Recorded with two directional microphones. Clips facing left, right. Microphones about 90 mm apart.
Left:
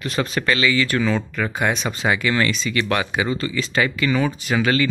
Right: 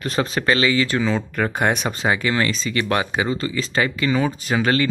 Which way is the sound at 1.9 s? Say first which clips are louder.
Even; 35° right (ahead or behind).